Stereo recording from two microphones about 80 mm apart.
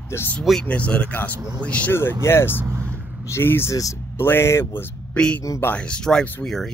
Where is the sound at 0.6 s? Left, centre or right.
Centre.